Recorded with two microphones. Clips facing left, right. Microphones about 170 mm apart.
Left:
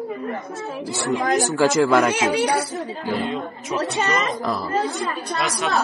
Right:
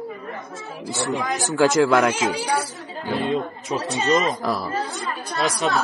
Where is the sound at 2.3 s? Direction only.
65° left (ahead or behind).